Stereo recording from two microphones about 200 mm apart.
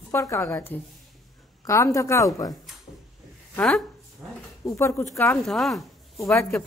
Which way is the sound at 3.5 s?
5° left (ahead or behind).